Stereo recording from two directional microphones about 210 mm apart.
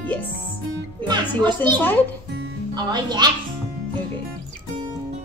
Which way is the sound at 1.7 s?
10° left (ahead or behind).